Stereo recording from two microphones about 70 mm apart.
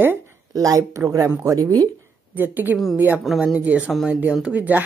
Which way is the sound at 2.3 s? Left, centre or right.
Right.